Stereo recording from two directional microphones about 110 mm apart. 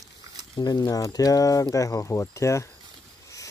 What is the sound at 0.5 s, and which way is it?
Speech, 40° left (ahead or behind).